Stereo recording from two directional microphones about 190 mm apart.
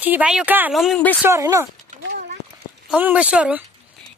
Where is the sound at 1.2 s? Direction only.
15° right (ahead or behind).